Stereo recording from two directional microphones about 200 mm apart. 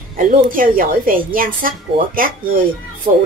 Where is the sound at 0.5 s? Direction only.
45° right (ahead or behind).